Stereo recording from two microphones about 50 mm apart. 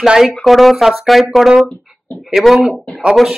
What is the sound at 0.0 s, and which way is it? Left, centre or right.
Speech, centre.